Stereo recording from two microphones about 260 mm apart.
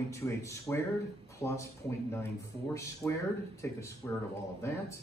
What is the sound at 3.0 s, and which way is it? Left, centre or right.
Speech, centre.